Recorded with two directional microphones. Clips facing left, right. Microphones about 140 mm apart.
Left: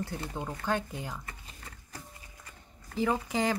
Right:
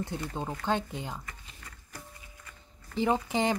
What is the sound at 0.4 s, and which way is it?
Speech, 25° right (ahead or behind).